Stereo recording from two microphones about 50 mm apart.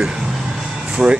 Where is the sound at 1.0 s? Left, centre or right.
Right.